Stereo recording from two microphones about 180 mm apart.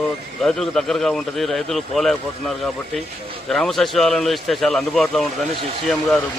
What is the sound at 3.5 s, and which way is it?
Speech, centre (ahead or behind).